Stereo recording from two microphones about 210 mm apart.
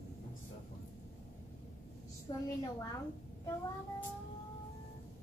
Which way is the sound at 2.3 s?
20° left (ahead or behind).